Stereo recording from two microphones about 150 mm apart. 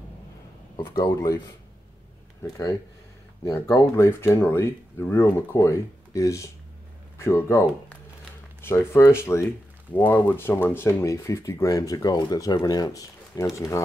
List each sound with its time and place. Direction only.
0.7 s speech: 25° left (ahead or behind)
2.4 s speech: 20° left (ahead or behind)